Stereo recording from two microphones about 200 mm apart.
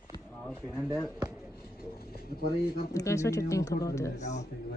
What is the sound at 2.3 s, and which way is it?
Speech, 50° left (ahead or behind).